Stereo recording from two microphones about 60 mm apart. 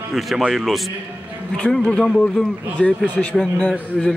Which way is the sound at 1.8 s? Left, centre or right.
Centre.